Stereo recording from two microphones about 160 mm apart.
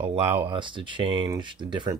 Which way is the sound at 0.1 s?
40° right (ahead or behind).